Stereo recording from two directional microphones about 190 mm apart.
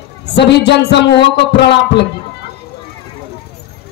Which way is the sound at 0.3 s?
65° left (ahead or behind).